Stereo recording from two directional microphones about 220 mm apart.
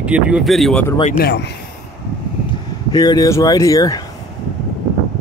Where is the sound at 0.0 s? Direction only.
5° right (ahead or behind).